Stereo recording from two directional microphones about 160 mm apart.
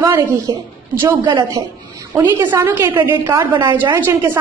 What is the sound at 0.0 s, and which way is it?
A woman's voice, 20° right (ahead or behind).